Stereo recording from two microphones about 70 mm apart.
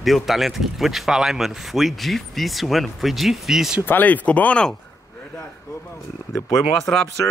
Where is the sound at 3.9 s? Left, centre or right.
Left.